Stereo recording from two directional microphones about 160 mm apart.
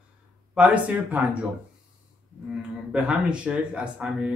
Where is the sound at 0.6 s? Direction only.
10° right (ahead or behind).